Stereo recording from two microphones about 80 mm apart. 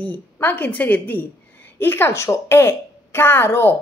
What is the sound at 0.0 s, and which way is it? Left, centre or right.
A woman's voice, left.